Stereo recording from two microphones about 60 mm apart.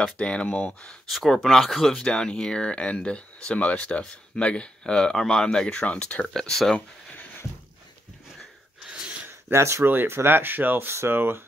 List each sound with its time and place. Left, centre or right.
0.0 s speech: centre
1.0 s speech: centre
2.0 s speech: centre
6.2 s speech: centre
9.5 s speech: right
9.8 s speech: right